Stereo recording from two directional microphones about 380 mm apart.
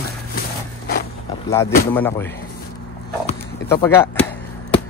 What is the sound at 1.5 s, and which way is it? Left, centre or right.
Speech, centre.